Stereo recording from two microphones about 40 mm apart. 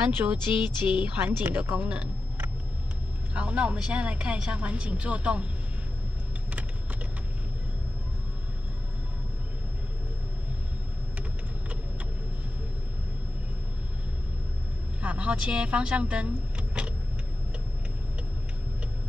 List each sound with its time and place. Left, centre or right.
0.0 s a woman's voice: right
3.3 s a woman's voice: right
15.0 s speech: right